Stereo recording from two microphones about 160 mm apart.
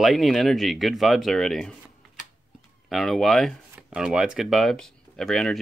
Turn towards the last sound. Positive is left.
turn(degrees=0)  # may be behind; listen again after turning